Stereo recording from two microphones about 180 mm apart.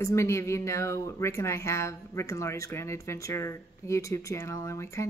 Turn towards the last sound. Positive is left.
turn(degrees=15)  # may be behind; listen again after turning